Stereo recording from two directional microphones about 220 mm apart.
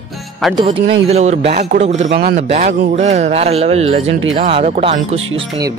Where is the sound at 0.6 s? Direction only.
30° right (ahead or behind).